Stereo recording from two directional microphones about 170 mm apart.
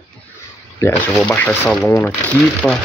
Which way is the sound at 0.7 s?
15° left (ahead or behind).